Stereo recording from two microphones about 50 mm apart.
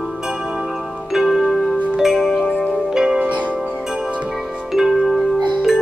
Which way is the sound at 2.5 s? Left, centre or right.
Centre.